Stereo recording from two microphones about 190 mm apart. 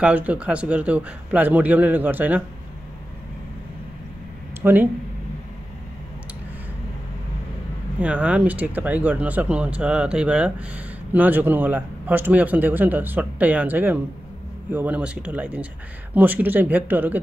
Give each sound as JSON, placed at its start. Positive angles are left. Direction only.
{"t": 0.0, "sound": "speech", "side_deg": -10}
{"t": 4.6, "sound": "speech", "side_deg": -10}
{"t": 8.0, "sound": "speech", "side_deg": -5}